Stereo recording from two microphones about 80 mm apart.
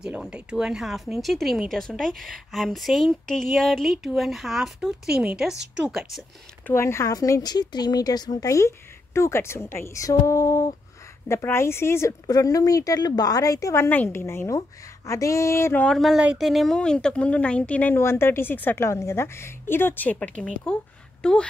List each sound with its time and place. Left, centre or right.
0.2 s speech: centre
6.7 s a woman's voice: left
7.1 s speech: left
7.4 s a woman's voice: left
8.5 s a woman's voice: left
10.0 s music: left
11.2 s a woman's voice: left
12.3 s speech: left
13.8 s a woman's voice: left
15.9 s speech: centre
17.9 s a woman's voice: left
18.9 s a woman's voice: left; by 21.5 s centre